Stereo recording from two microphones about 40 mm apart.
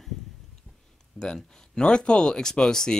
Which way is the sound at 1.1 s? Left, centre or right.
Centre.